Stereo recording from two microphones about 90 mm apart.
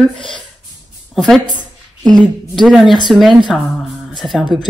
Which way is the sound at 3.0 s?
Centre (ahead or behind).